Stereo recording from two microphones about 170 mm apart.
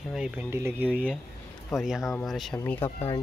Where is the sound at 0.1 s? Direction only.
5° right (ahead or behind).